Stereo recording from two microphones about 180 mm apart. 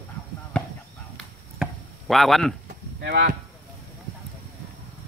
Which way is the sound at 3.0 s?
75° right (ahead or behind).